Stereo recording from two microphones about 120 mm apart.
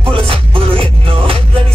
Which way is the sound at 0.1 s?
50° right (ahead or behind).